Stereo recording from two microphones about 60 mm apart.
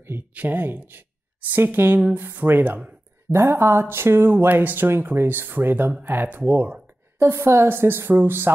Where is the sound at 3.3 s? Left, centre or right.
Right.